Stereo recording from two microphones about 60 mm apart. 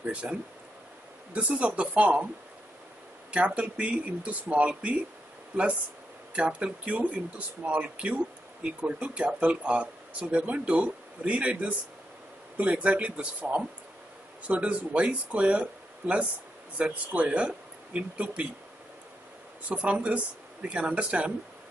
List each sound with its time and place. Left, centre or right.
0.0 s speech: centre
3.3 s speech: centre
6.3 s speech: centre
19.7 s speech: right